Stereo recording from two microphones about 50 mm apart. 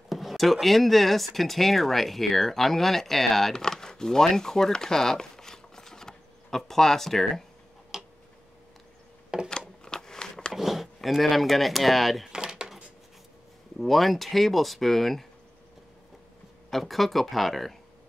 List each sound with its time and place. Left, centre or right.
0.1 s speech: centre
7.9 s tick-tock: centre
9.3 s a sound: centre
9.8 s a sound: centre
10.5 s speech: centre
12.3 s dishes: centre
13.7 s speech: centre
16.7 s speech: centre